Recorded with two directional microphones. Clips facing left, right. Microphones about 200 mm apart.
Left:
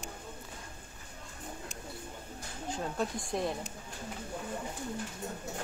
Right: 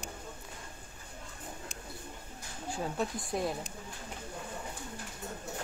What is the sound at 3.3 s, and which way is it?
Speech, 5° right (ahead or behind).